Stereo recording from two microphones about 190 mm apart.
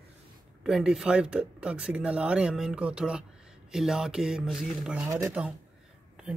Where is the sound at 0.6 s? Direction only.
Centre (ahead or behind).